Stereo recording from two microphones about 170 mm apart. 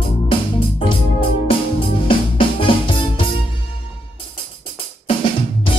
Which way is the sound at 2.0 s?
30° left (ahead or behind).